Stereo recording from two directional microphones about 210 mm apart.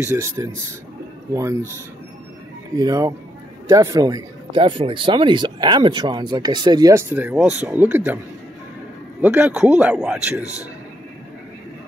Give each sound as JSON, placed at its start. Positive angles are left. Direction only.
{"t": 0.0, "sound": "speech", "side_deg": -15}
{"t": 2.8, "sound": "speech", "side_deg": -15}
{"t": 9.2, "sound": "a man's voice", "side_deg": -5}